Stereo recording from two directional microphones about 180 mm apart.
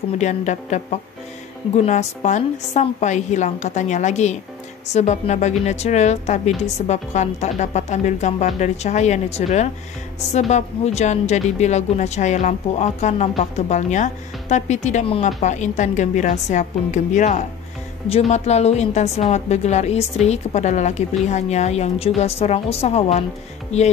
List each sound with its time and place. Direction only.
0.2 s a woman's voice: 40° left (ahead or behind)